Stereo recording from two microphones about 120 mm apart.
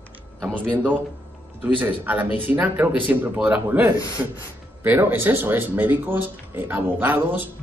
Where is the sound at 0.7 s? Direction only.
15° right (ahead or behind).